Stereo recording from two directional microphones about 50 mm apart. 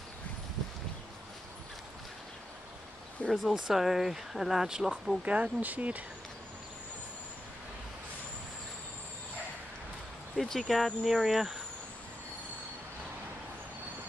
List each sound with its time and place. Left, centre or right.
3.3 s speech: centre
3.5 s speech: centre
5.2 s speech: right
10.3 s speech: centre